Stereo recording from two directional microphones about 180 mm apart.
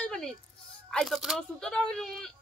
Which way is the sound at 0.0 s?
5° left (ahead or behind).